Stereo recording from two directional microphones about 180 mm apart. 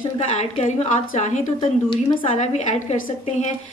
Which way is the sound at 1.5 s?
30° left (ahead or behind).